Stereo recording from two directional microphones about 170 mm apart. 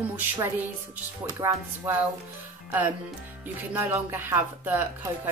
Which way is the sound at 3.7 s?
10° right (ahead or behind).